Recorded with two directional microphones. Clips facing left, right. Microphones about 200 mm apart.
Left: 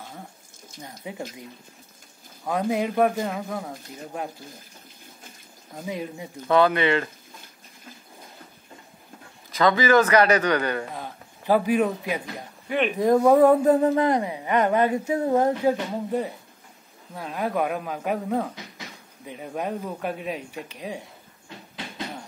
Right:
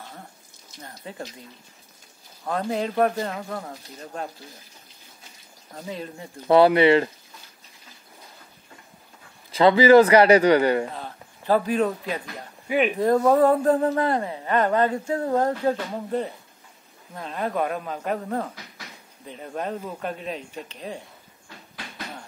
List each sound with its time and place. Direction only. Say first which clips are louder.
0.7 s speech: left 2 dB; 10° left (ahead or behind)
2.4 s speech: left 2 dB; 10° left (ahead or behind)
5.8 s speech: left 2 dB; 15° left (ahead or behind)
6.4 s a man's voice: right 4 dB; 30° right (ahead or behind)
9.5 s a man's voice: right 5 dB; 30° right (ahead or behind)
10.9 s a man's voice: even; 15° left (ahead or behind)
12.6 s speech: right 2 dB; 5° right (ahead or behind)
12.9 s speech: left 3 dB; 15° left (ahead or behind)
21.5 s a sound: left 3 dB; 20° left (ahead or behind)